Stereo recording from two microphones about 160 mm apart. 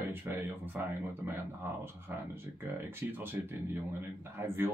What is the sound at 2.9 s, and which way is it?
Speech, 15° right (ahead or behind).